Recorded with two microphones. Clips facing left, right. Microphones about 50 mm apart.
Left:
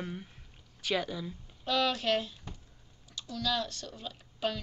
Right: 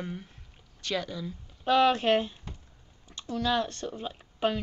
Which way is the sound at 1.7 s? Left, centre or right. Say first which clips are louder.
Right 7 dB; right.